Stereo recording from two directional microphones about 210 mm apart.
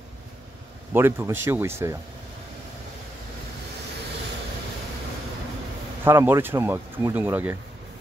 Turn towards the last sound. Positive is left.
turn(degrees=-10)  # may be behind; listen again after turning